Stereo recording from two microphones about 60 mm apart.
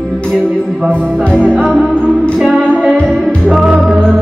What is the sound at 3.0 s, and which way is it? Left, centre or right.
Music, centre.